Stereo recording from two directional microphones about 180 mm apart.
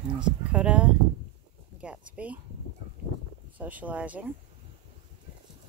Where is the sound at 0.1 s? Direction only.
5° right (ahead or behind).